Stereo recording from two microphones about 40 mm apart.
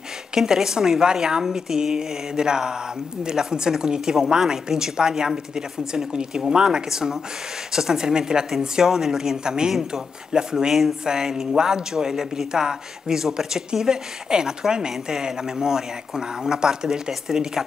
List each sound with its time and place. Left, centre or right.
0.4 s a woman's voice: centre